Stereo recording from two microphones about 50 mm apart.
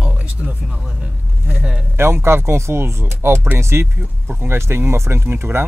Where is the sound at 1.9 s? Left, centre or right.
Right.